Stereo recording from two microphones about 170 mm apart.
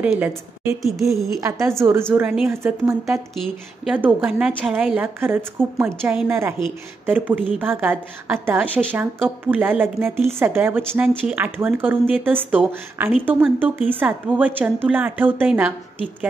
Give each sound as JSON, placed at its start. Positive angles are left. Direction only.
{"t": 0.0, "sound": "a woman's voice", "side_deg": -10}
{"t": 1.4, "sound": "a woman's voice", "side_deg": -15}
{"t": 3.3, "sound": "a woman's voice", "side_deg": -5}